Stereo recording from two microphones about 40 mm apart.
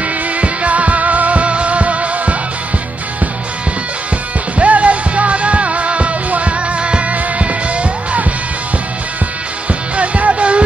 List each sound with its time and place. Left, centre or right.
0.0 s music: right
4.6 s music: right
9.9 s music: right